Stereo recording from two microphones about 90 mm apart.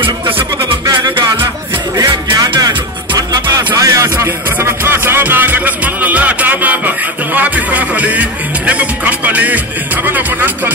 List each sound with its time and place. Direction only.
3.2 s music: 40° right (ahead or behind); by 10.7 s 20° right (ahead or behind)